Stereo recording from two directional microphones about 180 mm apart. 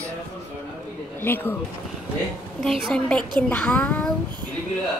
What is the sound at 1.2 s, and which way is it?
Speech, 10° left (ahead or behind).